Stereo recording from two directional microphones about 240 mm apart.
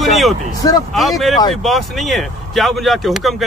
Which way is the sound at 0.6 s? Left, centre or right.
Centre.